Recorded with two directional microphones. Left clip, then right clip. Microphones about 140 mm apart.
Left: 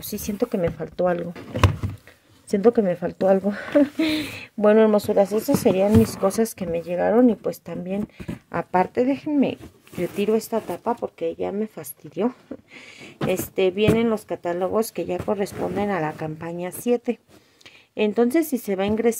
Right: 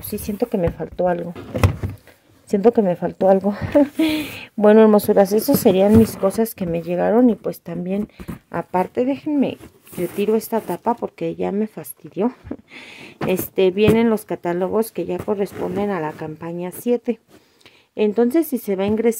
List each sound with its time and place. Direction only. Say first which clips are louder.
0.0 s speech: right 2 dB; 5° right (ahead or behind)
2.5 s speech: right 3 dB; 10° right (ahead or behind)
4.6 s speech: right 4 dB; 25° right (ahead or behind)
6.2 s speech: right 2 dB; 10° right (ahead or behind)
8.5 s speech: even; 5° right (ahead or behind)